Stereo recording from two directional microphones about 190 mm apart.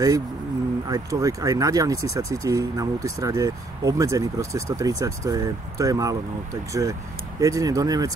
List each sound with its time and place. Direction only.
0.8 s speech: 20° right (ahead or behind)